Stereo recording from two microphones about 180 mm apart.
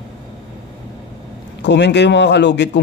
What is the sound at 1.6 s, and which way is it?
Speech, 75° left (ahead or behind).